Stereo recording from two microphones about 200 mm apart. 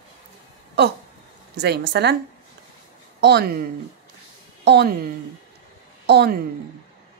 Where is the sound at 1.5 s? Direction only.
55° right (ahead or behind).